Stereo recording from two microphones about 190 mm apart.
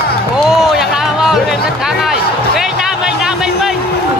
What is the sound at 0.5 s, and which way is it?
Music, centre (ahead or behind).